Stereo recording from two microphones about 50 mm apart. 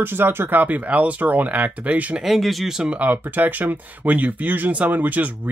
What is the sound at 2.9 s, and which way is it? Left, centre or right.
Speech, right.